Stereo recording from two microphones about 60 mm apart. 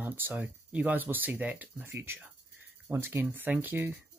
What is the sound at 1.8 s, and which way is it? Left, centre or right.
Speech, right.